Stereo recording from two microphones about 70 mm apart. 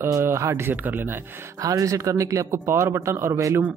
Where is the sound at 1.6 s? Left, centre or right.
Right.